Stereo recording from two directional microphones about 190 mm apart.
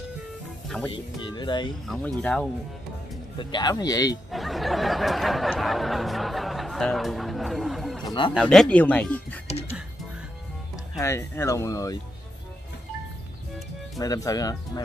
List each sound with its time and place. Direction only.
0.7 s speech: 5° left (ahead or behind)
1.2 s speech: 25° left (ahead or behind)
1.9 s speech: 5° left (ahead or behind)
3.3 s speech: 20° left (ahead or behind)
4.3 s a sound: centre (ahead or behind)
8.0 s a man's voice: 20° left (ahead or behind)
8.4 s speech: 5° left (ahead or behind)
11.0 s speech: 15° left (ahead or behind)
13.9 s speech: 20° left (ahead or behind)